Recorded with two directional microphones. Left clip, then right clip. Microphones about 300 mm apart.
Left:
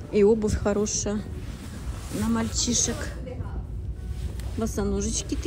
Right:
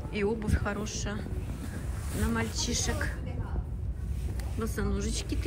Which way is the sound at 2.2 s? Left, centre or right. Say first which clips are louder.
Left 5 dB; centre.